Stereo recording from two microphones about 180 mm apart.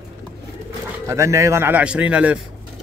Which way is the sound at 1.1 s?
15° right (ahead or behind).